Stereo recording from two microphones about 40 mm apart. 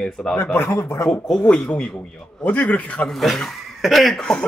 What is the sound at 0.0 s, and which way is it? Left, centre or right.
Speech, centre.